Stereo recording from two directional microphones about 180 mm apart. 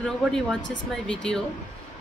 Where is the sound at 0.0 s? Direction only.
5° left (ahead or behind).